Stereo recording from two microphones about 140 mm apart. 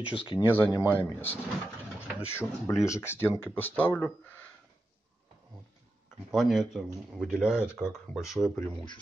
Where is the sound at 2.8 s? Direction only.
20° left (ahead or behind).